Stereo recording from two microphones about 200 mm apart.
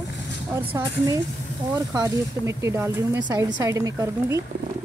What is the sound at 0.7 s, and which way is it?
Speech, 15° right (ahead or behind).